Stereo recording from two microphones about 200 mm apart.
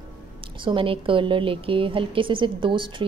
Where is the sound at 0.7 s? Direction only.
25° right (ahead or behind).